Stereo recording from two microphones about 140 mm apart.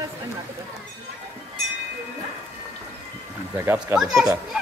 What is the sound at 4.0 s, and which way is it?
Speech, 5° right (ahead or behind).